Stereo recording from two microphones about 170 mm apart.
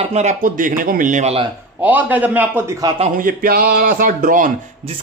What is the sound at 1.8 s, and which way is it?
Speech, 10° right (ahead or behind).